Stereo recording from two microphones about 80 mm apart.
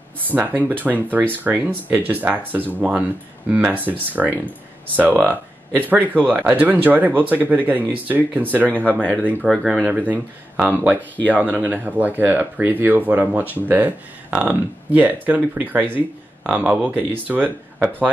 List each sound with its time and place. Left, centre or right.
0.3 s speech: right
9.5 s speech: centre; by 17.5 s right